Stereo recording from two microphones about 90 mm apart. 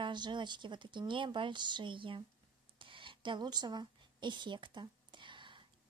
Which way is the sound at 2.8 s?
70° right (ahead or behind).